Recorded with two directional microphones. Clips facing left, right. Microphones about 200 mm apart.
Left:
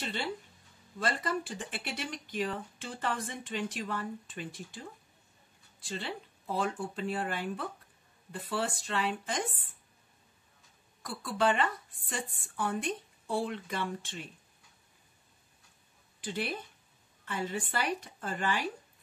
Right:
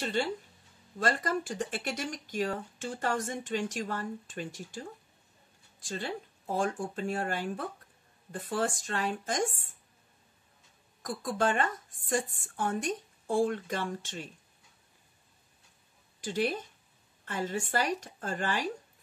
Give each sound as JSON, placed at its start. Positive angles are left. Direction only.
{"t": 0.0, "sound": "speech", "side_deg": -45}
{"t": 5.8, "sound": "speech", "side_deg": -45}
{"t": 11.0, "sound": "speech", "side_deg": -45}
{"t": 16.2, "sound": "speech", "side_deg": -45}